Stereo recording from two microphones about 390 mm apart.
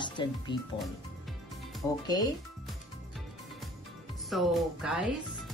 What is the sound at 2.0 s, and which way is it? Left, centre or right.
Speech, centre.